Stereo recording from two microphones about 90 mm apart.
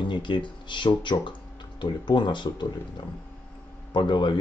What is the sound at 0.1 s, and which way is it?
Speech, 65° left (ahead or behind).